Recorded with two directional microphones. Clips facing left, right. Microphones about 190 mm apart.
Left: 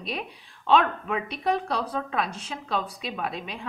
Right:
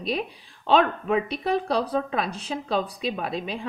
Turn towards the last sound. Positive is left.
turn(degrees=-35)  # may be behind; listen again after turning